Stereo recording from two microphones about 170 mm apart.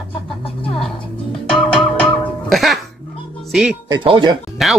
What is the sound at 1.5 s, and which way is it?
Music, centre (ahead or behind).